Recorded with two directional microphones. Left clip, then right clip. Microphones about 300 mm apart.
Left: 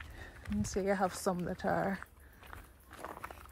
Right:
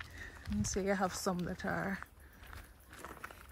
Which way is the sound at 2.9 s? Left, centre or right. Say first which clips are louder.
Left 3 dB; centre.